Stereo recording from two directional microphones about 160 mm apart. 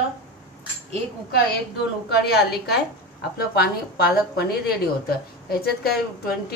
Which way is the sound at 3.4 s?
80° left.